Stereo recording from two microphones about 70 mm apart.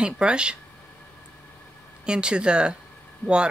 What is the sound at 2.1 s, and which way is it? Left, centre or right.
Speech, centre.